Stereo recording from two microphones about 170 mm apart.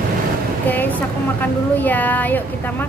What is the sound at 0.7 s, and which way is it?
Speech, 10° left (ahead or behind).